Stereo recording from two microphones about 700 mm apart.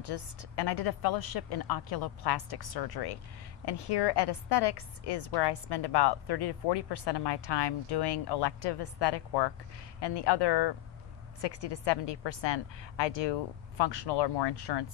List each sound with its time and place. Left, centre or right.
0.0 s a woman's voice: left